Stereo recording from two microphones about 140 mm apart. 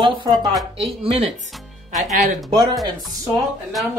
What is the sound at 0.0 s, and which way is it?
Speech, 30° right (ahead or behind).